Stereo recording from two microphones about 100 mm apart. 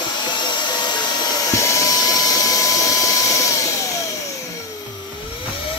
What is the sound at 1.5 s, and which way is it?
Vacuum cleaner, 30° left (ahead or behind).